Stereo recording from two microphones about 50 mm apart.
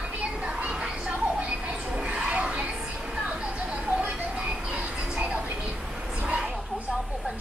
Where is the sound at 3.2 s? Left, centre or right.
Right.